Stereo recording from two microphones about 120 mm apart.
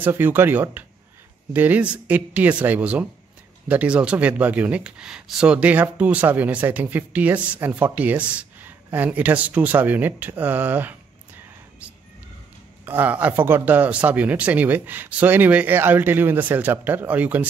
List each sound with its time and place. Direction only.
0.0 s speech: 15° right (ahead or behind)
12.8 s speech: 15° right (ahead or behind)